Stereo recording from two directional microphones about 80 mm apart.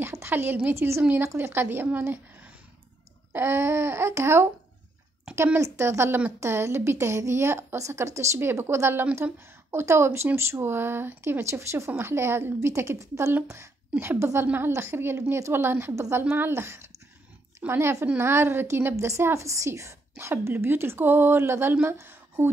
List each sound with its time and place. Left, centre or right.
0.0 s a woman's voice: right